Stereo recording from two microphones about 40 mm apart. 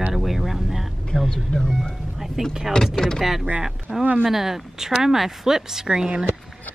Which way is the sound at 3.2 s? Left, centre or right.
Centre.